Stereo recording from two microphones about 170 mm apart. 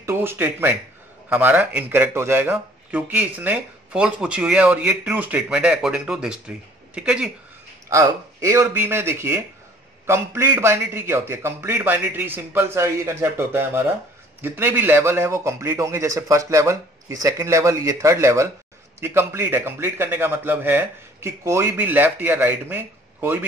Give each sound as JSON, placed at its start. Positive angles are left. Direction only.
{"t": 0.0, "sound": "speech", "side_deg": -15}
{"t": 7.9, "sound": "speech", "side_deg": -15}